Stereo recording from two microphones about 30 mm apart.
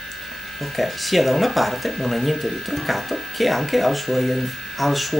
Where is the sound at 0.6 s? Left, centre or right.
Centre.